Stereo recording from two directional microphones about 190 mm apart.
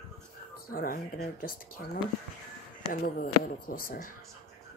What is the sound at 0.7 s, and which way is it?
Speech, 50° left (ahead or behind).